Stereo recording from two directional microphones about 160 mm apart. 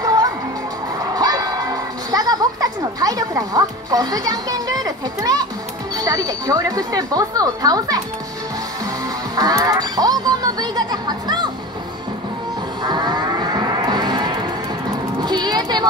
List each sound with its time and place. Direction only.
0.0 s music: 25° right (ahead or behind)
9.3 s music: 25° right (ahead or behind)
12.8 s moo: 25° right (ahead or behind)
14.9 s music: 25° right (ahead or behind)